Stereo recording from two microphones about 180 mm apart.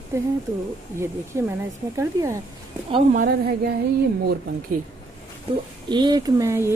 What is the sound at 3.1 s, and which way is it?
Speech, 50° right (ahead or behind).